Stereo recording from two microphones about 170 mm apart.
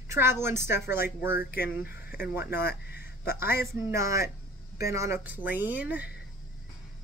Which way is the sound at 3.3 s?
15° right (ahead or behind).